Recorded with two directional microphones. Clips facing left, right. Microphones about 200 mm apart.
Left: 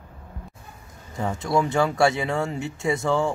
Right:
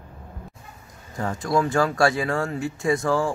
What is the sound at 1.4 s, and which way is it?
Speech, 25° left (ahead or behind).